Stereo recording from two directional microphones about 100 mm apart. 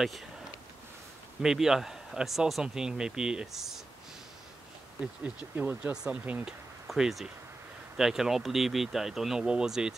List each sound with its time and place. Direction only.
1.4 s speech: 5° right (ahead or behind)
5.0 s speech: 15° right (ahead or behind)
6.9 s speech: centre (ahead or behind)